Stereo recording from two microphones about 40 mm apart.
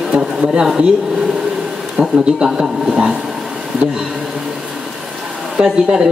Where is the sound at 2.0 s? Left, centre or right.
Centre.